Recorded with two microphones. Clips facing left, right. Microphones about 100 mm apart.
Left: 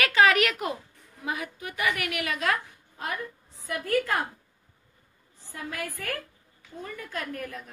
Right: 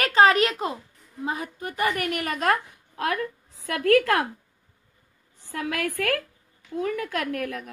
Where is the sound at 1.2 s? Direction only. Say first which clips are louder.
Right 3 dB; 35° right (ahead or behind).